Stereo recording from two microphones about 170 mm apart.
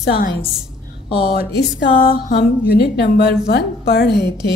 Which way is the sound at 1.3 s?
70° left (ahead or behind).